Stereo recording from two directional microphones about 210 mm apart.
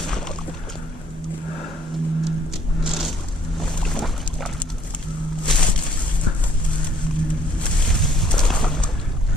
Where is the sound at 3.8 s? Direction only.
Centre (ahead or behind).